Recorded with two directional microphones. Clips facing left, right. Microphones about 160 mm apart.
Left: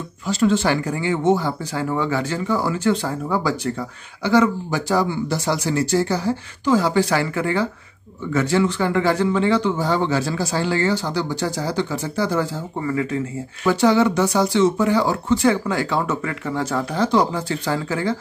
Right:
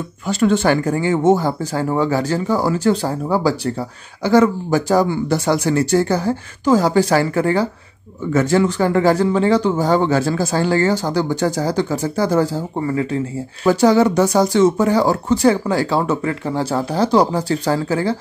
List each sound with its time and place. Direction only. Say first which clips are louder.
0.3 s speech: right 3 dB; 55° right (ahead or behind); by 18.1 s 35° right (ahead or behind)